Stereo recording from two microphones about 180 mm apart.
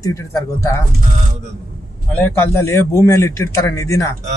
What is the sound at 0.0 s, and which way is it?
Speech, 15° left (ahead or behind).